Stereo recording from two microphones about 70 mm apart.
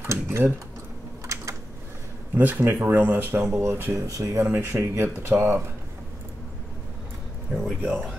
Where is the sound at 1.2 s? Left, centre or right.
Right.